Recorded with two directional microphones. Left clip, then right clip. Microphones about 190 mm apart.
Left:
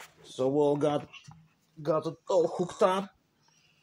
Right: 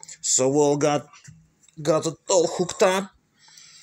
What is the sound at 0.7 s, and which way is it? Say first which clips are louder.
Speech: right 6 dB; 5° right (ahead or behind).